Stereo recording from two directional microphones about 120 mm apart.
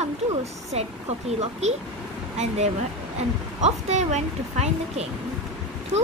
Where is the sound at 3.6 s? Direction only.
70° right (ahead or behind).